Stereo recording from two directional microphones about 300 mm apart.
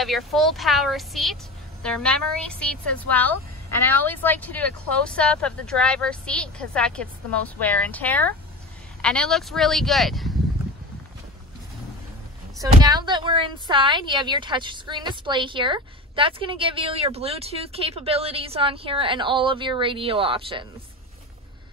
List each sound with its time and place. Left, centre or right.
0.0 s speech: centre
12.5 s a woman's voice: centre